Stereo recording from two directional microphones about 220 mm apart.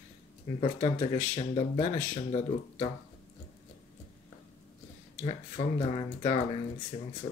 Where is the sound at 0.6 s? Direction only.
30° left (ahead or behind).